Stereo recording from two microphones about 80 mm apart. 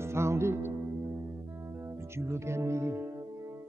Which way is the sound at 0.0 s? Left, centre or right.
Right.